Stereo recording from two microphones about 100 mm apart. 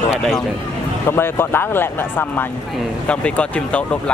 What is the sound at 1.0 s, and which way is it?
Speech, 20° left (ahead or behind).